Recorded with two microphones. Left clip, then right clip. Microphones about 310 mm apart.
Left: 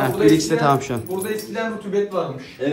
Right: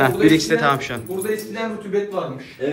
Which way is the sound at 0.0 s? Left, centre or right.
Centre.